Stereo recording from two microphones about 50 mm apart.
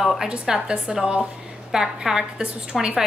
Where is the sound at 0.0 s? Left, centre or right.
Centre.